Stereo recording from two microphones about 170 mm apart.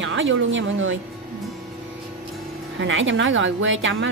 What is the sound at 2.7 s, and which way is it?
Speech, 90° right.